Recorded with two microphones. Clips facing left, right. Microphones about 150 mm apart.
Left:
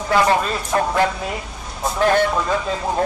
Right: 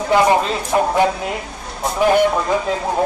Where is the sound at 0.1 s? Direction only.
20° right (ahead or behind).